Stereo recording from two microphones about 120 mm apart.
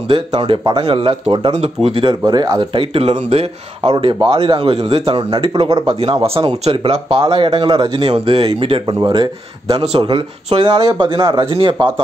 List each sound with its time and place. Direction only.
0.1 s speech: 45° right (ahead or behind)
2.8 s speech: 55° right (ahead or behind)
6.2 s speech: 55° right (ahead or behind)